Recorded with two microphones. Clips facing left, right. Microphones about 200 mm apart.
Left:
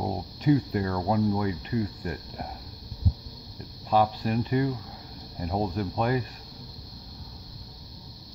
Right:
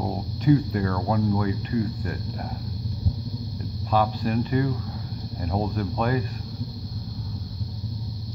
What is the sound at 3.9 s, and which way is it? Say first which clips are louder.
Speech: right 1 dB; 25° left (ahead or behind).